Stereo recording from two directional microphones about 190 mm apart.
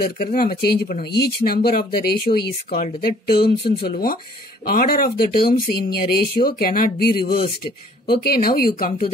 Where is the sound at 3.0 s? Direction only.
55° left (ahead or behind).